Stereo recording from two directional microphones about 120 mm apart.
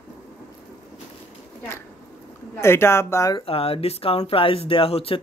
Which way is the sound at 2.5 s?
20° left (ahead or behind).